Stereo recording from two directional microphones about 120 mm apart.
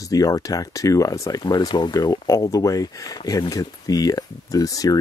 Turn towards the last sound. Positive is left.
turn(degrees=30)  # may be behind; listen again after turning